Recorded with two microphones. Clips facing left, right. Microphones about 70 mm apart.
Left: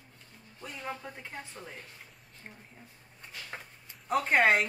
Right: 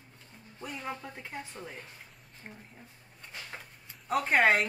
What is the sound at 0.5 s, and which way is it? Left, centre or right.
Speech, right.